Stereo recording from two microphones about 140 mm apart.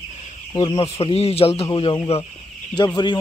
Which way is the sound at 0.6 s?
40° left (ahead or behind).